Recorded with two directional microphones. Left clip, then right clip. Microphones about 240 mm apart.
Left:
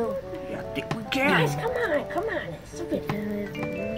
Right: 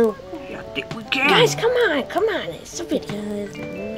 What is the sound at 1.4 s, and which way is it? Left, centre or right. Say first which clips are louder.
Speech: right 9 dB; right.